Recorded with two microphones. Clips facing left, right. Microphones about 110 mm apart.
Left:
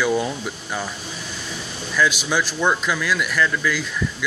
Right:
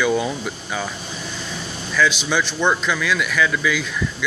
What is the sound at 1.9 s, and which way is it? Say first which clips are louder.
Speech: right 1 dB; 5° left (ahead or behind).